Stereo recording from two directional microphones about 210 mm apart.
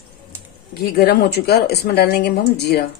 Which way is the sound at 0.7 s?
50° left (ahead or behind).